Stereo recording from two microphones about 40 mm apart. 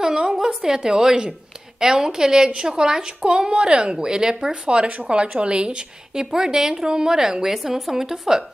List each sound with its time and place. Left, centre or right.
0.0 s a woman's voice: centre